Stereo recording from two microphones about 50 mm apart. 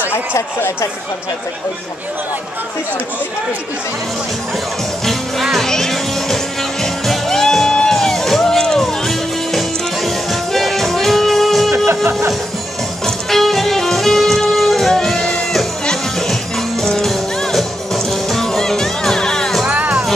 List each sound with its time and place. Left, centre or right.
0.1 s speech: left
5.0 s music: centre
11.7 s music: right
13.0 s music: centre
19.7 s music: right